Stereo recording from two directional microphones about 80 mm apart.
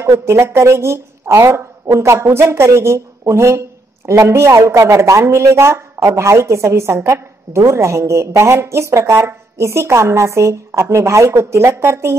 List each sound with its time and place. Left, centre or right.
0.0 s speech: right